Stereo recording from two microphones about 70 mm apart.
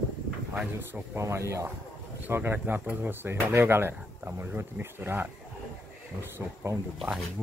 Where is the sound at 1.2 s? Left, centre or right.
Right.